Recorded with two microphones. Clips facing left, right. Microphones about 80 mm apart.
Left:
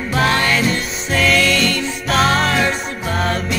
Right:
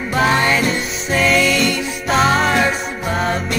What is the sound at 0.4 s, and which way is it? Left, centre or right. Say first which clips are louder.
Music: right 1 dB; centre.